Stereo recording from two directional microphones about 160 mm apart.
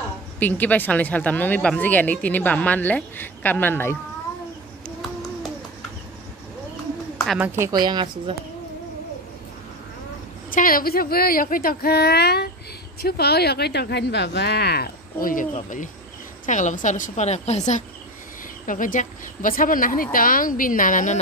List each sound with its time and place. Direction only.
0.4 s speech: 10° left (ahead or behind)
7.3 s a woman's voice: 15° right (ahead or behind)
7.8 s speech: 30° right (ahead or behind)
10.5 s a woman's voice: 60° left (ahead or behind)